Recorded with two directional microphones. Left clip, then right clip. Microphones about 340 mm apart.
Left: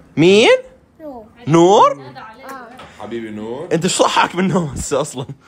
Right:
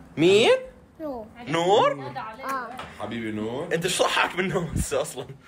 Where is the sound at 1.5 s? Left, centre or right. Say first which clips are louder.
Left 10 dB; centre.